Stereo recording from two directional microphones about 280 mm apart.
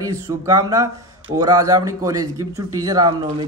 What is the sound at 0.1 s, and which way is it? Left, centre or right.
A man's voice, centre.